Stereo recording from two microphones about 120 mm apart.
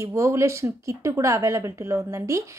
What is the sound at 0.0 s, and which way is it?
Speech, 25° right (ahead or behind).